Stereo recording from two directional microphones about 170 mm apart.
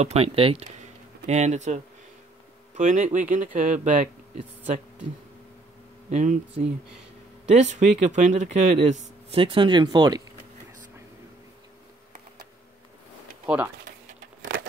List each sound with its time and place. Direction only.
0.0 s speech: 40° right (ahead or behind)
6.0 s speech: 45° right (ahead or behind)
9.4 s speech: 30° right (ahead or behind)